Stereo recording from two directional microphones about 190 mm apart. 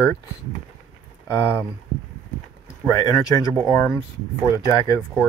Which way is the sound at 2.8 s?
20° left (ahead or behind).